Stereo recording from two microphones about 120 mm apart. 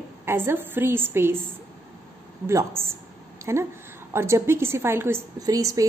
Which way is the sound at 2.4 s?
20° right (ahead or behind).